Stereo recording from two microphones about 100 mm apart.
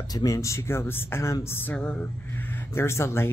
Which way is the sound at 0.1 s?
35° left (ahead or behind).